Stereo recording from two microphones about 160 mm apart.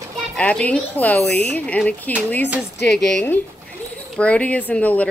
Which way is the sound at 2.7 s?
90° left.